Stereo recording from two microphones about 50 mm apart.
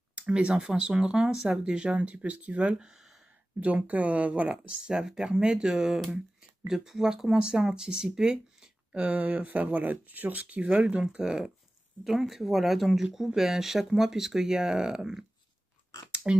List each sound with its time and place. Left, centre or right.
0.1 s speech: right
2.7 s speech: centre
3.0 s a sound: centre
3.6 s speech: right; by 11.5 s centre
12.0 s speech: centre
16.3 s speech: right